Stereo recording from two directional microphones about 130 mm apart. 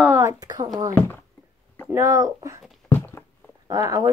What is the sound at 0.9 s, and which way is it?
Speech, 15° left (ahead or behind).